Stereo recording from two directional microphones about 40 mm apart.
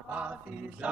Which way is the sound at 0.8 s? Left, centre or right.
Right.